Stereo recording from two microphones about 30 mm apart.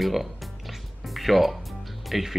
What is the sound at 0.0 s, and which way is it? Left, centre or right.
Speech, centre.